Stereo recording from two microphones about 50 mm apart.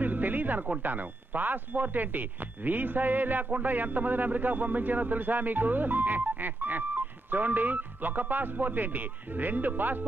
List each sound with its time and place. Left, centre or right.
0.0 s speech: right